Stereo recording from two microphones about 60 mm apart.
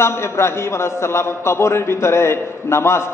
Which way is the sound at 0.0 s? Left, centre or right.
Left.